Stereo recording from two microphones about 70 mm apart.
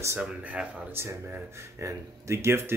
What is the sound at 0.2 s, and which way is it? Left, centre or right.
Speech, centre.